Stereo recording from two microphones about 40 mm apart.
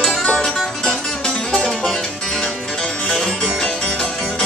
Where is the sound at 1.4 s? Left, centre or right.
Centre.